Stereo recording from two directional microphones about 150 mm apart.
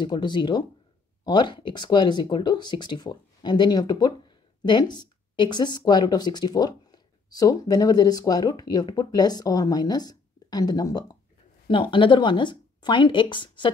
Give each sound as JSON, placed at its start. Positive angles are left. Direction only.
{"t": 0.0, "sound": "speech", "side_deg": 30}